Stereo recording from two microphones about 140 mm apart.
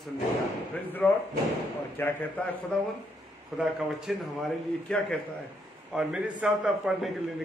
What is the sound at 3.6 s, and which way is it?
A man's voice, 5° right (ahead or behind).